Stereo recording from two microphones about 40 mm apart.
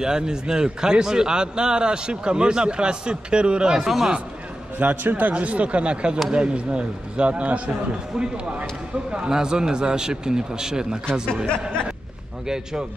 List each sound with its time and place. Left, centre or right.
0.0 s a man's voice: centre
4.7 s a man's voice: right
9.1 s a man's voice: right